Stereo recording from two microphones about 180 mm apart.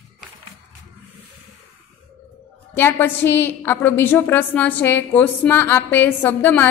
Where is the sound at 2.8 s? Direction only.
10° left (ahead or behind).